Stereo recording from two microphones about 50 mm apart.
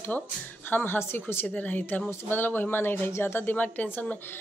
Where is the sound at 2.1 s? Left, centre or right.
Left.